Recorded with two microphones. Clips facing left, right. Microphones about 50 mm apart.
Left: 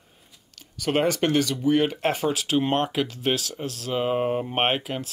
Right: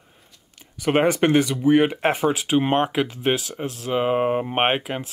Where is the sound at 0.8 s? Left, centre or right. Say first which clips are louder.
Right 4 dB; right.